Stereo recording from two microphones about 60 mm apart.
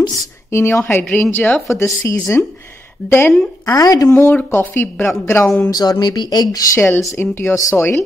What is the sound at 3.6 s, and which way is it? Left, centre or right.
Speech, left.